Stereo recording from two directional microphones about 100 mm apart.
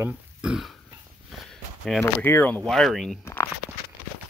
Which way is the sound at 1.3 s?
Centre (ahead or behind).